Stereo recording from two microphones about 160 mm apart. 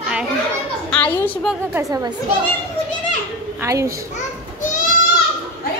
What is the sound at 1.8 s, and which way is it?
Speech, 20° right (ahead or behind).